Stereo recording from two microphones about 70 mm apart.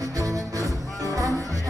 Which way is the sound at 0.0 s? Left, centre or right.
Right.